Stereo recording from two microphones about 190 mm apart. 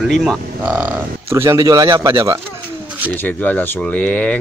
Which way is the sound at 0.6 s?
10° right (ahead or behind).